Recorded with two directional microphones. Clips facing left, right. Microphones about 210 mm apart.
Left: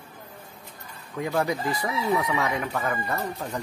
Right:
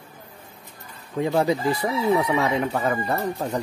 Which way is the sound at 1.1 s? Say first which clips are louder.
Right 5 dB; 25° right (ahead or behind).